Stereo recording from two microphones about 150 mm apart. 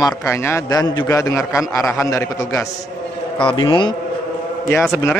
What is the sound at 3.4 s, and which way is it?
Speech, 35° left (ahead or behind).